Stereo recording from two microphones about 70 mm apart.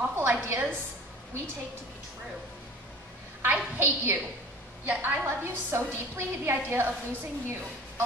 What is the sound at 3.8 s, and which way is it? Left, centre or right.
A woman's voice, right.